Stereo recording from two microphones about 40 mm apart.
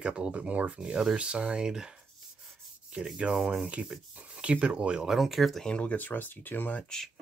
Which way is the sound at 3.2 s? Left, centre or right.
Right.